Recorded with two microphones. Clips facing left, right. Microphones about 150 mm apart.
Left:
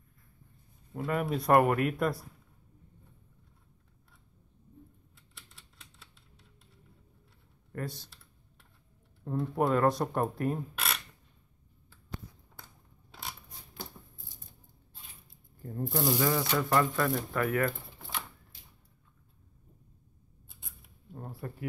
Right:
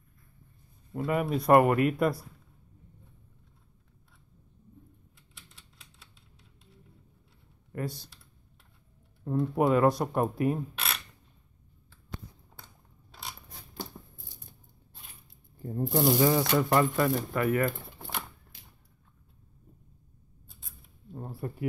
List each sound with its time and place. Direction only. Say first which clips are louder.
0.9 s speech: right 3 dB; 5° right (ahead or behind)
7.7 s computer keyboard: right 3 dB; 5° right (ahead or behind)
9.2 s speech: right 3 dB; centre (ahead or behind)
15.6 s speech: right 5 dB; 20° right (ahead or behind)
16.9 s speech: right 3 dB; 10° right (ahead or behind)
21.1 s zipper: right 3 dB; 5° right (ahead or behind)